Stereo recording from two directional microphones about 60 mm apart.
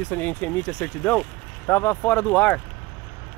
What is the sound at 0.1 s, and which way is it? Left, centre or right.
Speech, left.